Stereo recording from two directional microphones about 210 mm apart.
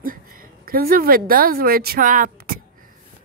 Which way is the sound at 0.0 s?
40° right (ahead or behind).